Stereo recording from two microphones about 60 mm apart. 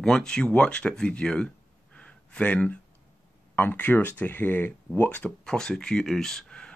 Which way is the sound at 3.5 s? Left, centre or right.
Left.